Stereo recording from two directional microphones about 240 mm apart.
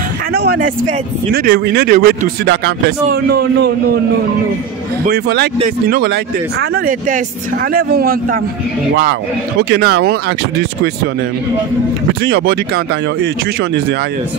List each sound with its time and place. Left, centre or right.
0.3 s speech: right
5.0 s speech: right
9.6 s speech: right
12.2 s speech: right